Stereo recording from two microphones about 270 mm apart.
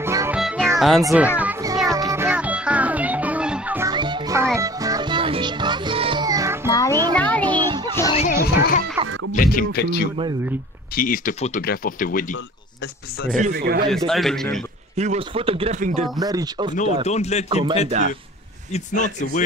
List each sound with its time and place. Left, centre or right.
0.0 s music: centre
1.0 s speech: centre
1.4 s music: centre
6.7 s music: centre
7.4 s children playing: centre
8.1 s chatter: left
9.3 s speech: left
13.4 s speech: right
13.8 s speech: centre
15.0 s speech: right
16.2 s speech: centre
17.0 s a man's voice: left
17.5 s speech: centre
18.7 s a man's voice: left